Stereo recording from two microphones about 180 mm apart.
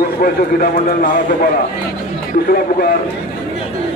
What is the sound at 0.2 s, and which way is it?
A man's voice, 55° left (ahead or behind).